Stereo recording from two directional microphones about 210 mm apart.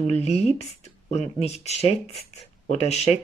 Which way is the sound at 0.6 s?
30° left (ahead or behind).